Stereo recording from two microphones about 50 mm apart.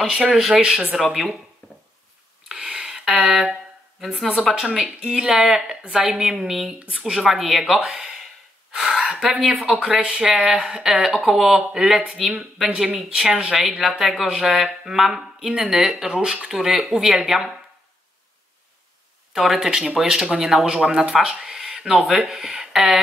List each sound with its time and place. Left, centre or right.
0.3 s speech: centre
1.1 s speech: centre
1.6 s a sound: left
2.4 s a sound: centre
3.3 s speech: centre
5.3 s speech: centre
7.9 s a sound: centre
8.7 s gasp: centre
9.3 s speech: centre
19.3 s speech: centre